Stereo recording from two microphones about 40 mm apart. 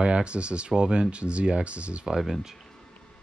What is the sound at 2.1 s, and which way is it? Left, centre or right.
Speech, centre.